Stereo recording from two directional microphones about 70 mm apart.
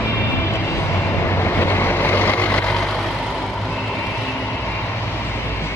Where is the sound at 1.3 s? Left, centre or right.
Left.